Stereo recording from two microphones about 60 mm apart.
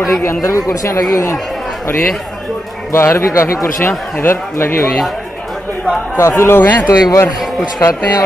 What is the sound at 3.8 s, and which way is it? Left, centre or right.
Speech, left.